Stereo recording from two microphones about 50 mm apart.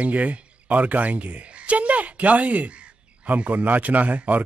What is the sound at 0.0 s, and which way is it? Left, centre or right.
A man's voice, right.